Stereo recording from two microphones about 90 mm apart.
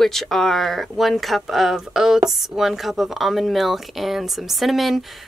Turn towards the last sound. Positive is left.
turn(degrees=0)  # may be behind; listen again after turning